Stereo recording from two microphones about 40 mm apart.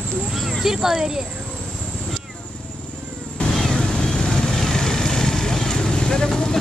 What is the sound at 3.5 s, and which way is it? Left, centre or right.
Vehicle, centre.